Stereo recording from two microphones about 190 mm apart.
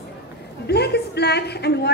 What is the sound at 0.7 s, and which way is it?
A woman's voice, 60° left (ahead or behind).